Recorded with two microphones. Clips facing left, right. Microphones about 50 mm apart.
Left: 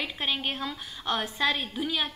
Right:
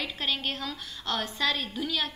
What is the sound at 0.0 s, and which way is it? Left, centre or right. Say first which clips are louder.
A woman's voice: left 1 dB; centre.